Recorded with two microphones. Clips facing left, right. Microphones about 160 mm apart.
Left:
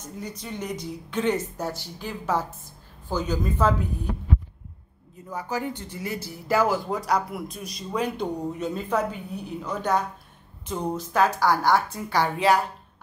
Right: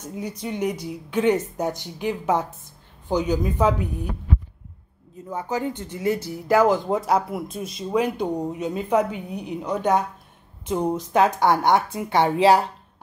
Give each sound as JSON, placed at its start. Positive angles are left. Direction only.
{"t": 0.0, "sound": "speech", "side_deg": -15}
{"t": 5.3, "sound": "speech", "side_deg": -20}
{"t": 7.9, "sound": "speech", "side_deg": -10}